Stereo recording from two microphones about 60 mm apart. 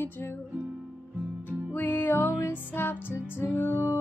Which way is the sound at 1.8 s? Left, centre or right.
Left.